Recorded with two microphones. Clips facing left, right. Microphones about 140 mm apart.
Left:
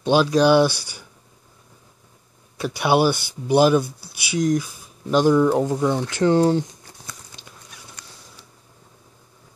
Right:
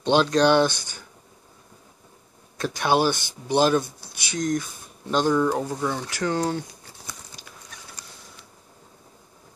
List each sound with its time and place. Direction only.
0.0 s speech: 5° left (ahead or behind)
2.5 s speech: 10° left (ahead or behind); by 6.6 s 25° left (ahead or behind)
7.4 s a sound: 25° left (ahead or behind)